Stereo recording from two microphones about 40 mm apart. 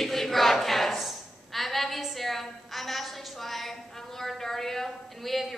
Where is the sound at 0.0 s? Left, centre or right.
Centre.